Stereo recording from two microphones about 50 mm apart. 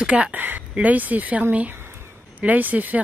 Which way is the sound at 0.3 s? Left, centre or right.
Right.